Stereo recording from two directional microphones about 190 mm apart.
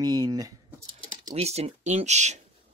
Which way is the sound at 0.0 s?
20° right (ahead or behind).